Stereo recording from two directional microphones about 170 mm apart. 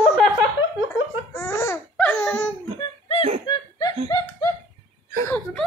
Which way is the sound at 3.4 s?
20° left (ahead or behind).